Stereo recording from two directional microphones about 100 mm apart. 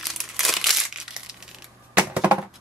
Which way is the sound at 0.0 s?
Centre (ahead or behind).